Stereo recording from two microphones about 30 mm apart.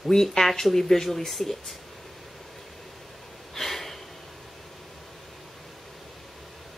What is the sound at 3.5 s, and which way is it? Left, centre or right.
Gasp, centre.